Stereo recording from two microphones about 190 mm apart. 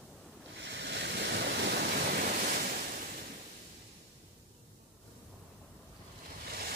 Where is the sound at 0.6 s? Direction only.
65° right (ahead or behind); by 2.8 s 50° right (ahead or behind).